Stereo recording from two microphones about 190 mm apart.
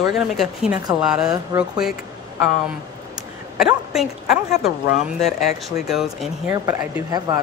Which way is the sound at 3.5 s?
Centre (ahead or behind).